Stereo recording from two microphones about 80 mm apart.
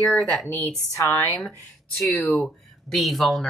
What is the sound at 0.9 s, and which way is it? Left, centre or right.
Speech, left.